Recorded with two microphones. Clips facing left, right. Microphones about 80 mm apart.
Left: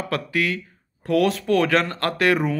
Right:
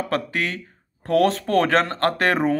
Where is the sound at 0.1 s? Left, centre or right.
Right.